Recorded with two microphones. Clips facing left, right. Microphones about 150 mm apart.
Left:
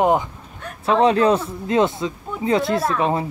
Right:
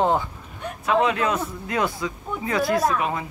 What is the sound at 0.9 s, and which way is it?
A man's voice, 30° left (ahead or behind).